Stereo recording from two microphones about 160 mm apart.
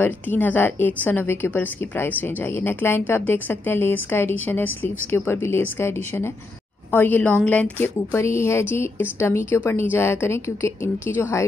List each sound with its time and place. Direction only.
0.0 s a woman's voice: 10° left (ahead or behind)